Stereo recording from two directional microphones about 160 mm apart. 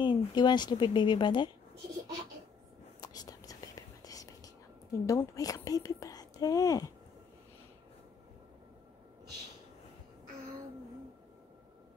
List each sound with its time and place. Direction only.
0.0 s speech: 30° left (ahead or behind)
3.0 s whispering: 25° left (ahead or behind)
5.0 s speech: 20° left (ahead or behind)